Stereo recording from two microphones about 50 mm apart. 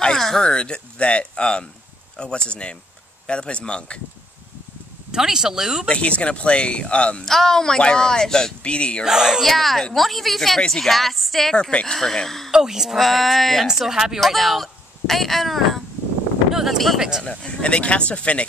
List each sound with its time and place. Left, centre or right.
0.0 s a sound: centre
0.4 s speech: centre
5.1 s speech: centre
5.9 s speech: left
7.2 s speech: centre
9.0 s speech: centre
9.5 s speech: centre
12.4 s speech: centre
13.0 s speech: centre
13.7 s speech: centre
17.2 s speech: centre